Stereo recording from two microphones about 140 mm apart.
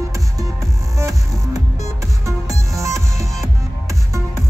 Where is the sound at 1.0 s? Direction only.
25° right (ahead or behind).